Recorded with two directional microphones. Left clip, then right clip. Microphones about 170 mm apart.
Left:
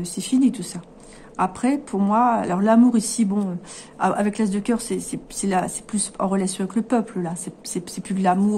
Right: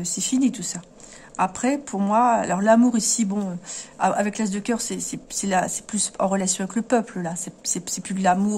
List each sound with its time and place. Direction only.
0.0 s speech: 25° right (ahead or behind)